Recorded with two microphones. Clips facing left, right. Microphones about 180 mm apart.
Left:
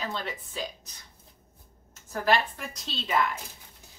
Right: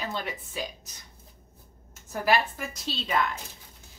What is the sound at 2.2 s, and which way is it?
Speech, 5° right (ahead or behind).